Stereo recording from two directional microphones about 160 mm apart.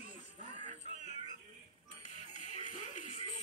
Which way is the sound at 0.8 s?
45° left (ahead or behind).